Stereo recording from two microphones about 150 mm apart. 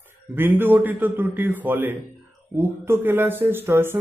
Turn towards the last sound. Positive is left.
turn(degrees=-15)  # may be behind; listen again after turning